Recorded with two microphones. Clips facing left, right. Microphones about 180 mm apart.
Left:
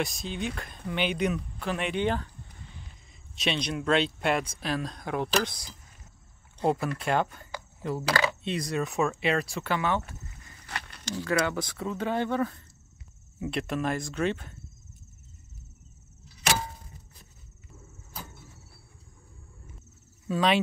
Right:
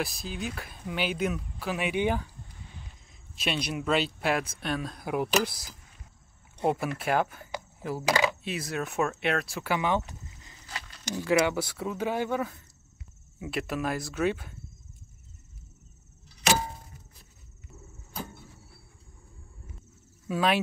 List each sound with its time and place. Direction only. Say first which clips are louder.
0.0 s speech: left 2 dB; centre (ahead or behind)
3.3 s speech: left 1 dB; 5° right (ahead or behind)
8.1 s speech: right 2 dB; 15° right (ahead or behind)
8.5 s speech: left 3 dB; 5° right (ahead or behind)
10.7 s a sound: left 3 dB; 60° left (ahead or behind)
11.1 s speech: right 3 dB; 15° right (ahead or behind)
20.2 s speech: left 1 dB; 5° right (ahead or behind)